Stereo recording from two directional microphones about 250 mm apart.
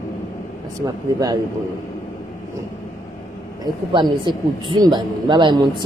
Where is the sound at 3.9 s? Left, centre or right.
Centre.